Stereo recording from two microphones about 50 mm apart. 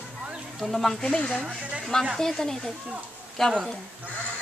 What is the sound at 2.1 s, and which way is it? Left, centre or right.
Speech, centre.